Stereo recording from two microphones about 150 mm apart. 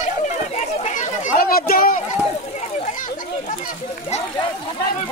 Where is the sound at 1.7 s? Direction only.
75° left (ahead or behind).